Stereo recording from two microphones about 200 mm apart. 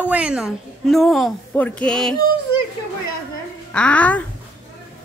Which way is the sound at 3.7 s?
5° left (ahead or behind).